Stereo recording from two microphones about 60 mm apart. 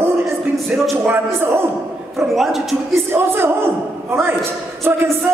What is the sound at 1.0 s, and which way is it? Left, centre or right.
Speech, right.